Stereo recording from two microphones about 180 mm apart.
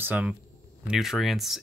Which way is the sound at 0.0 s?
5° right (ahead or behind).